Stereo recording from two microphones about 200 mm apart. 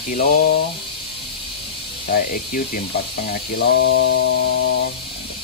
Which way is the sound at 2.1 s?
45° left (ahead or behind).